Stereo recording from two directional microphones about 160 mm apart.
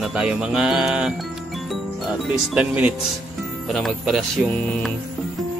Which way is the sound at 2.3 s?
10° right (ahead or behind).